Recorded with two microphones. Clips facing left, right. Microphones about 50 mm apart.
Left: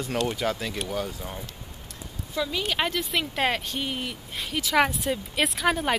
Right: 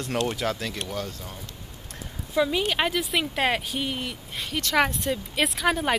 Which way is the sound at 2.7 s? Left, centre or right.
Centre.